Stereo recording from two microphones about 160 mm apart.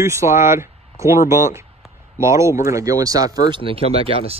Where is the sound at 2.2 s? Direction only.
20° right (ahead or behind).